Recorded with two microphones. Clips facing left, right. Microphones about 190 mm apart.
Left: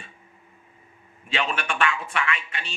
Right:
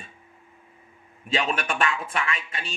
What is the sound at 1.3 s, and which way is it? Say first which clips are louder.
A man's voice: right 1 dB; 35° right (ahead or behind).